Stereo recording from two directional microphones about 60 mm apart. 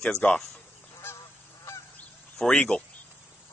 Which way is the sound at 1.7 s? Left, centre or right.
Left.